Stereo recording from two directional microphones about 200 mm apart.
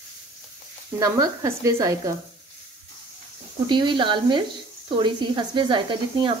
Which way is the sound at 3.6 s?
25° right (ahead or behind).